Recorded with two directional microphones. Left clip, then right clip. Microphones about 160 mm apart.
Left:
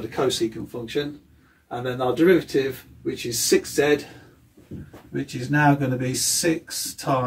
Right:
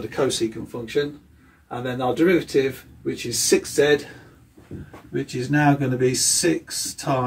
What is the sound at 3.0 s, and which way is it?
Speech, 25° left (ahead or behind).